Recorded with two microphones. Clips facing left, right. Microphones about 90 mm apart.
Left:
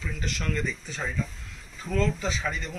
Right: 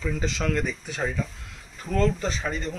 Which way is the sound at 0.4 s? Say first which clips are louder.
Right 4 dB; 80° right.